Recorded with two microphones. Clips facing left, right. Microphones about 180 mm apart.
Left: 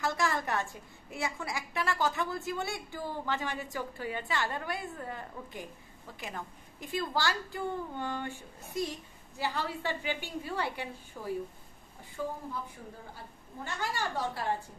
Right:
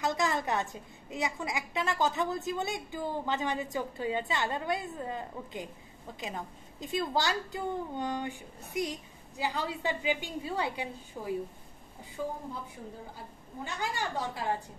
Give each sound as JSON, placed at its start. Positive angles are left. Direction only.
{"t": 0.0, "sound": "a woman's voice", "side_deg": -20}
{"t": 13.7, "sound": "a woman's voice", "side_deg": -15}